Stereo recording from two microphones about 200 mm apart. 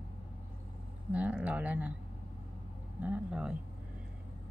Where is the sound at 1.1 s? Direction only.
5° right (ahead or behind).